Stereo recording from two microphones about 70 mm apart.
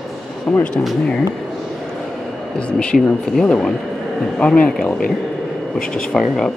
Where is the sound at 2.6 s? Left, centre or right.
Centre.